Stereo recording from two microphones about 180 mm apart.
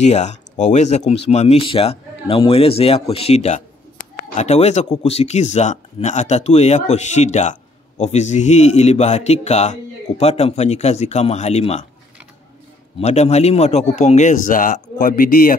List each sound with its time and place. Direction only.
0.0 s speech: 40° left (ahead or behind)
4.0 s a sound: 40° left (ahead or behind)
5.0 s speech: 35° left (ahead or behind)
13.0 s speech: 40° left (ahead or behind)